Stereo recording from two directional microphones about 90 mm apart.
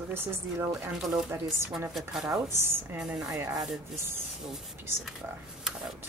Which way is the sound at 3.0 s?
10° right (ahead or behind).